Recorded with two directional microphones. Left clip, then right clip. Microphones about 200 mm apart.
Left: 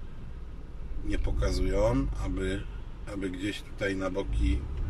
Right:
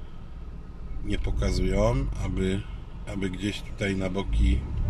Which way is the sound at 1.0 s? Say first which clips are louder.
Right 1 dB; 15° right (ahead or behind).